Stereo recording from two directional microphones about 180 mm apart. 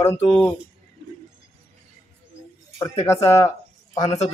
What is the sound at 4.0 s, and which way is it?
Speech, 35° left (ahead or behind).